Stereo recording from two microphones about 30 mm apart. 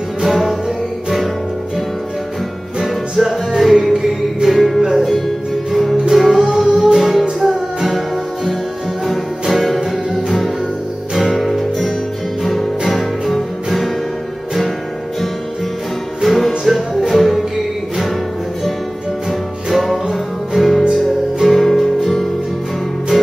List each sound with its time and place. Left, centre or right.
0.2 s music: centre
3.2 s music: centre
9.0 s music: centre
16.2 s music: centre
19.7 s music: centre